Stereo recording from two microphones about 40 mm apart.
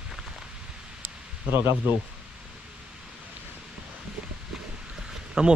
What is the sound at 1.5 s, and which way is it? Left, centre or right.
Speech, right.